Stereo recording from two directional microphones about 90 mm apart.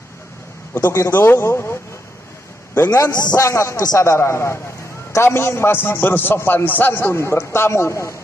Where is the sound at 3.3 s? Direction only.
35° left (ahead or behind).